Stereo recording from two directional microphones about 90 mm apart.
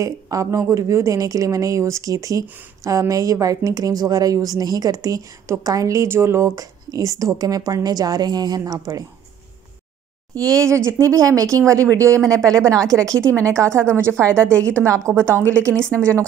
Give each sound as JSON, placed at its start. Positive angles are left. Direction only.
{"t": 0.0, "sound": "speech", "side_deg": -35}
{"t": 10.3, "sound": "speech", "side_deg": -40}
{"t": 12.2, "sound": "a woman's voice", "side_deg": 5}
{"t": 12.4, "sound": "a woman's voice", "side_deg": -40}
{"t": 15.7, "sound": "a woman's voice", "side_deg": 10}